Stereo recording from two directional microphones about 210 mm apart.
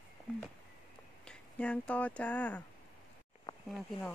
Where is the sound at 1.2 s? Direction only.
5° left (ahead or behind).